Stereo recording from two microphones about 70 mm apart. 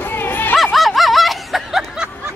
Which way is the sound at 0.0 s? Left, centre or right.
Left.